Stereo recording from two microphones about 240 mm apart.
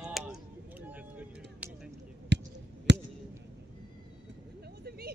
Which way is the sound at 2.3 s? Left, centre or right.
Right.